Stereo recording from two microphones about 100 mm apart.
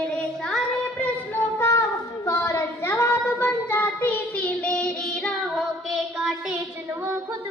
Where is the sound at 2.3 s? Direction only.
20° left (ahead or behind).